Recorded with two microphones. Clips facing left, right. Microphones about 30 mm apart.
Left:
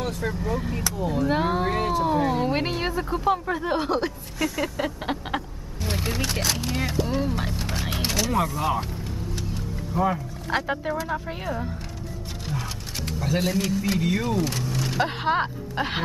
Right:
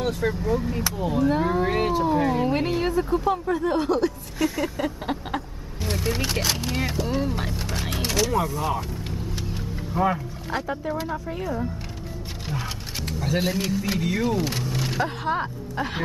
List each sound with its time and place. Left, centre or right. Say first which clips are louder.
0.0 s speech: right 3 dB; centre
1.3 s speech: right 1 dB; left
1.7 s speech: right 1 dB; centre
2.1 s speech: right 1 dB; centre
2.4 s speech: right 2 dB; centre
4.6 s vehicle: right 1 dB; centre
6.3 s speech: right 1 dB; centre
9.5 s vehicle: even; centre
10.5 s speech: left 3 dB; left
11.1 s speech: even; centre
12.4 s speech: right 1 dB; centre
14.5 s a sound: even; centre
15.0 s speech: left 2 dB; left